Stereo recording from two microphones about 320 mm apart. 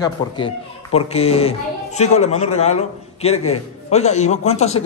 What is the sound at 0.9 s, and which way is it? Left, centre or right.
A man's voice, centre.